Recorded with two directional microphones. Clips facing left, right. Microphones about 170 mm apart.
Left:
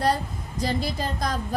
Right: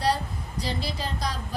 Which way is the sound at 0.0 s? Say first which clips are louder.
Left 2 dB; 50° left (ahead or behind).